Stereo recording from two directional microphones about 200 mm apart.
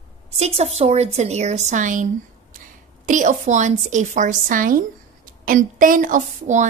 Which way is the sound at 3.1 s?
40° right (ahead or behind).